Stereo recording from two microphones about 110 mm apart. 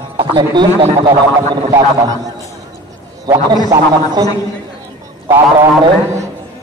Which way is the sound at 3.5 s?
40° right (ahead or behind).